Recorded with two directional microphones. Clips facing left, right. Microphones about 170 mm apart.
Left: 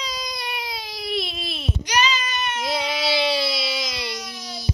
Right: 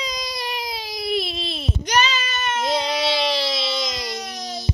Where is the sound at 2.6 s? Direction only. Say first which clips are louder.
Right 3 dB; 5° left (ahead or behind).